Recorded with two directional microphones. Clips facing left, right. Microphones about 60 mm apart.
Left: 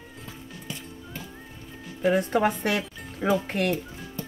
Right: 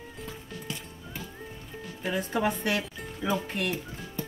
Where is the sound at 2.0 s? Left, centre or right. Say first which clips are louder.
Left 6 dB; left.